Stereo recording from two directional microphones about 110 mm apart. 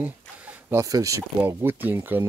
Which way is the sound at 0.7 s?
30° right (ahead or behind).